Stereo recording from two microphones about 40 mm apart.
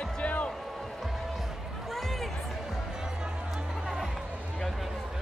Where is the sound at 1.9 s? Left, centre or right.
Centre.